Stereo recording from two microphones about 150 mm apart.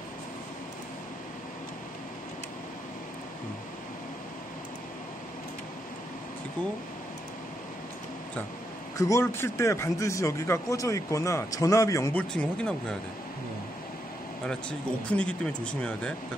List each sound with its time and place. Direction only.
8.9 s speech: 20° left (ahead or behind)
14.4 s speech: 5° left (ahead or behind)